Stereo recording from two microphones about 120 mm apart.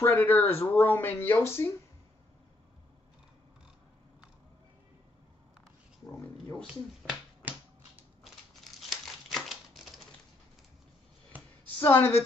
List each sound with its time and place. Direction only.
0.0 s speech: 20° left (ahead or behind)
6.7 s finger snapping: 10° right (ahead or behind)
8.8 s crumpling: centre (ahead or behind)
11.3 s a sound: 15° right (ahead or behind)
11.8 s a woman's voice: 15° left (ahead or behind)